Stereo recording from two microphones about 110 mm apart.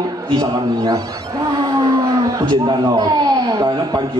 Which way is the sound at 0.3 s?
35° right (ahead or behind).